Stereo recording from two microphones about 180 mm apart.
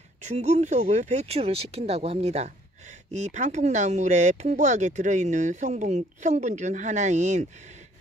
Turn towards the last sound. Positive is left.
turn(degrees=-40)  # may be behind; listen again after turning